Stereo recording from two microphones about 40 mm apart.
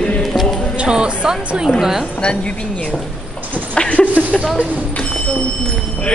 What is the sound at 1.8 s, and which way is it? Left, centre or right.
Speech, centre.